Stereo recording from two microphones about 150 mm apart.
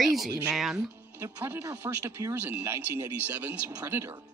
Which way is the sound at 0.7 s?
20° right (ahead or behind).